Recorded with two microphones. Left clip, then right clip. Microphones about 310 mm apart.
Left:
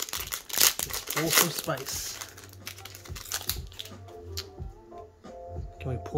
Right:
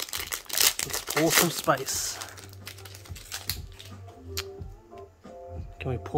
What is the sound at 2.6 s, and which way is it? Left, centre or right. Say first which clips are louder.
Typing: left 4 dB; centre.